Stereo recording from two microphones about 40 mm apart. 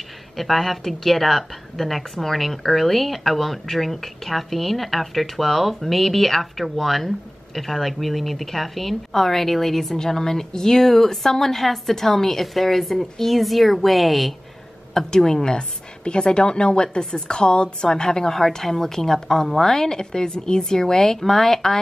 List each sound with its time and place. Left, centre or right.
0.4 s speech: centre
15.0 s a woman's voice: centre